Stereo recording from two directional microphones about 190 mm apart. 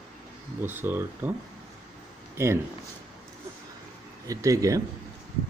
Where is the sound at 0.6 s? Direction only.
10° right (ahead or behind).